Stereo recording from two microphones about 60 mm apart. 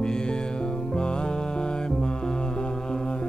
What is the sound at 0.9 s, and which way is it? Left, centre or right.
Music, centre.